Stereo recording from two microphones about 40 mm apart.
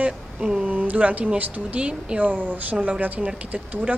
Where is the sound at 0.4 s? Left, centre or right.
Centre.